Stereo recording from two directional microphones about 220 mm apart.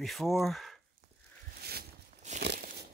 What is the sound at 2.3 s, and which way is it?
Crumpling, 40° right (ahead or behind).